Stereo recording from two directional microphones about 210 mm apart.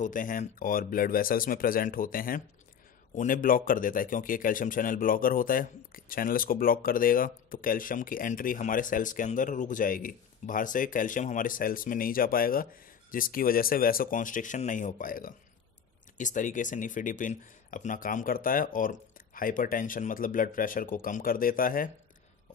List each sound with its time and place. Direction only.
0.0 s speech: 40° left (ahead or behind)